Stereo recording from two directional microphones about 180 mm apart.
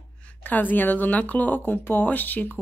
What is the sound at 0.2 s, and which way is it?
A woman's voice, 10° left (ahead or behind).